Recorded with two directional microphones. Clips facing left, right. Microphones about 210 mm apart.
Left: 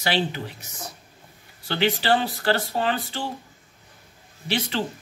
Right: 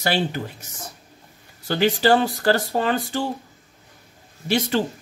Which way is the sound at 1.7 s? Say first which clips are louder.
Right 4 dB; 45° right (ahead or behind).